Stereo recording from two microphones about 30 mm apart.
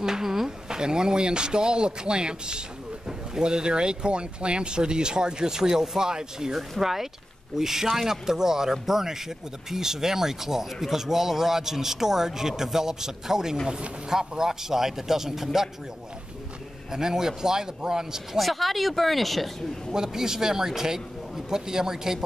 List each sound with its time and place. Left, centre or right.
0.0 s a sound: centre
0.7 s speech: right
6.8 s speech: centre
16.9 s speech: centre
18.4 s speech: centre
19.9 s speech: centre